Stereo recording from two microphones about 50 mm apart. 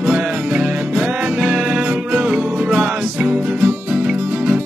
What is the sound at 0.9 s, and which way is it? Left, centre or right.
Music, centre.